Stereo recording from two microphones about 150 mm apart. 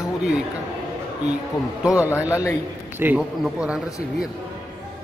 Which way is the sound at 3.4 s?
5° right (ahead or behind).